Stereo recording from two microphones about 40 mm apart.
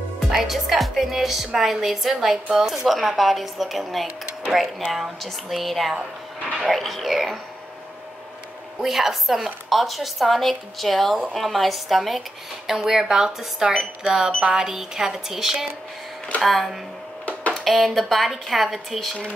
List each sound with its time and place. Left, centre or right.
0.3 s a woman's voice: centre
8.8 s a woman's voice: centre
16.3 s a woman's voice: centre
17.3 s a sound: left
17.6 s a woman's voice: centre